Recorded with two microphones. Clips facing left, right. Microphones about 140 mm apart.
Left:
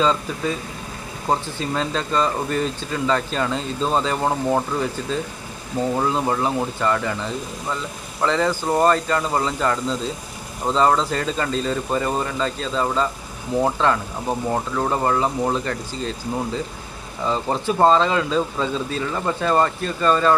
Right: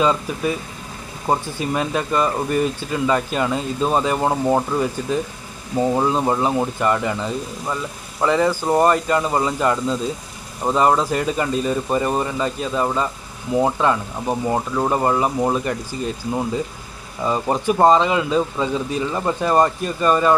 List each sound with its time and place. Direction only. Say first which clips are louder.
0.0 s speech: right 2 dB; 10° right (ahead or behind)
8.2 s speech: right 3 dB; 15° right (ahead or behind)
17.3 s speech: right 3 dB; 15° right (ahead or behind)